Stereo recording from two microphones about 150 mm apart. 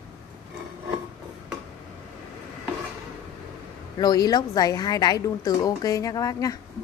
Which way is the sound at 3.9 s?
25° left (ahead or behind).